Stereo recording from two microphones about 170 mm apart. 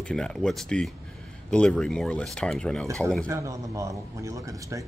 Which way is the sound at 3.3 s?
20° right (ahead or behind).